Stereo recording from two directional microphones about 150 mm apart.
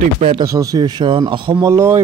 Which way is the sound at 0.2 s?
35° right (ahead or behind).